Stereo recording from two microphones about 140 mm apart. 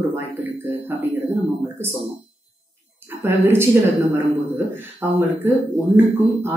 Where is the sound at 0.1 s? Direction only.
15° right (ahead or behind).